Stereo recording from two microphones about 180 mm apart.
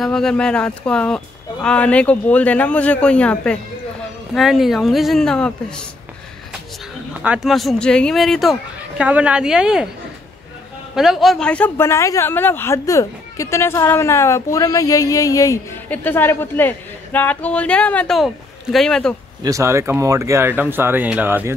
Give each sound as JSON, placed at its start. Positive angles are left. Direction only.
{"t": 0.0, "sound": "speech", "side_deg": 5}
{"t": 7.2, "sound": "speech", "side_deg": -5}
{"t": 11.0, "sound": "speech", "side_deg": 0}
{"t": 19.4, "sound": "speech", "side_deg": -15}